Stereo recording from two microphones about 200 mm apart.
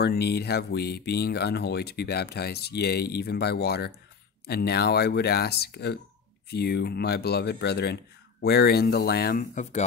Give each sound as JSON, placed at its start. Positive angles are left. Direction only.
{"t": 0.0, "sound": "speech", "side_deg": 55}